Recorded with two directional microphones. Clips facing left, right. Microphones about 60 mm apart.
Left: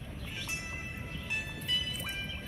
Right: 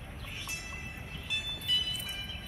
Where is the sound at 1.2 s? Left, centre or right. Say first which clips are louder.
Right 1 dB; left.